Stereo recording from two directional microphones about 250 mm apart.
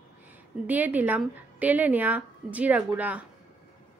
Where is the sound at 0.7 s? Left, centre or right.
Centre.